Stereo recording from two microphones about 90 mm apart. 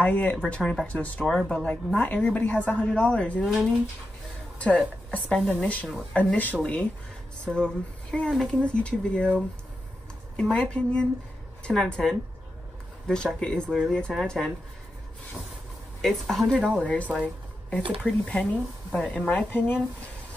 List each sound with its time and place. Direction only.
0.0 s a woman's voice: 15° left (ahead or behind)
3.4 s speech: centre (ahead or behind)
4.6 s a woman's voice: 15° left (ahead or behind)
16.0 s a woman's voice: 5° left (ahead or behind); by 19.8 s 20° left (ahead or behind)